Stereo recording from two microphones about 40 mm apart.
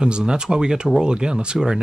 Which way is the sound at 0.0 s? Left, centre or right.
Centre.